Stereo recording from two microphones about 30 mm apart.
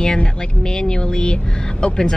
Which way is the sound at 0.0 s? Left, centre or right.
Left.